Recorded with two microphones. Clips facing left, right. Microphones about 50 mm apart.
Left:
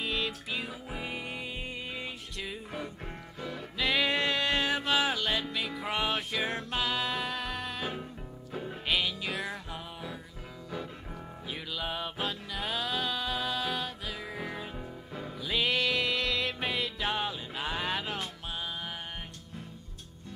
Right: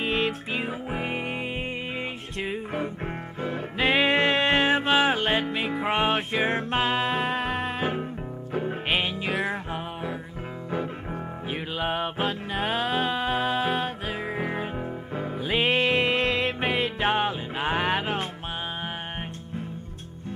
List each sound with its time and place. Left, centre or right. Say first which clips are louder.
0.0 s music: right 7 dB; right
11.5 s music: right 8 dB; right